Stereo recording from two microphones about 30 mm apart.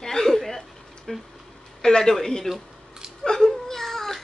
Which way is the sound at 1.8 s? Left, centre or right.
Left.